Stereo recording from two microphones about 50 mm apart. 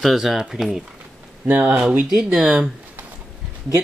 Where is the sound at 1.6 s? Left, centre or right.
Right.